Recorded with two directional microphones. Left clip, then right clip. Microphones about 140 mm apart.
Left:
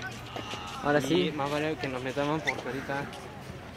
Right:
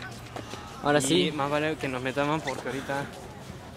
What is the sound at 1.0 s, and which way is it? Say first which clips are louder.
Speech: right 3 dB; 40° right (ahead or behind).